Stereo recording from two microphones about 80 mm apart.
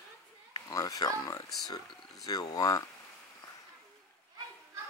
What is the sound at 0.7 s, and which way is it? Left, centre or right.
A child's voice, left.